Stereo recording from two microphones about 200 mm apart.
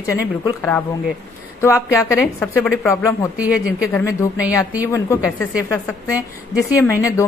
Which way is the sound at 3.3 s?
5° right (ahead or behind).